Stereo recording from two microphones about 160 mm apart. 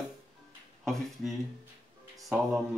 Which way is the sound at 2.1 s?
5° right (ahead or behind).